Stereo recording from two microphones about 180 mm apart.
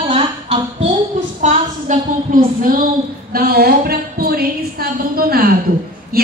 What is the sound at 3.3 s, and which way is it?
A woman's voice, 55° right (ahead or behind).